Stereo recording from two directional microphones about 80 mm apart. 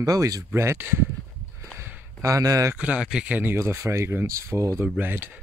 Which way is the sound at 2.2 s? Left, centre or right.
Right.